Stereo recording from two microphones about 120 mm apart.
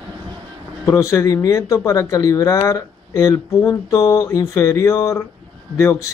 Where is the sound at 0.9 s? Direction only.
25° left (ahead or behind).